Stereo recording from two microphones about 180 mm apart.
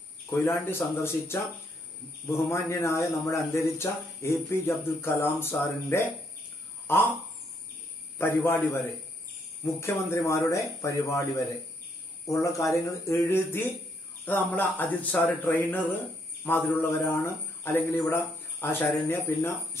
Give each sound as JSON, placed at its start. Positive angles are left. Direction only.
{"t": 0.3, "sound": "a man's voice", "side_deg": 15}
{"t": 8.2, "sound": "a man's voice", "side_deg": 15}
{"t": 12.3, "sound": "a man's voice", "side_deg": 15}